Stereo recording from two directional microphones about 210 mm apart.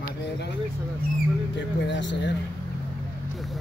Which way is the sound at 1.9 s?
60° left (ahead or behind).